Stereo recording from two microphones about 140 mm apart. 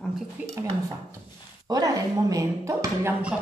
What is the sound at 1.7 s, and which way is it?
Speech, 25° right (ahead or behind).